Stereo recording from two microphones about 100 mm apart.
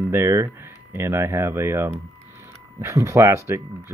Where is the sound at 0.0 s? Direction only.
30° right (ahead or behind).